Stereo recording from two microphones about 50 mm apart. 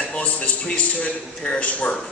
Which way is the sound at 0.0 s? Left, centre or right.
Left.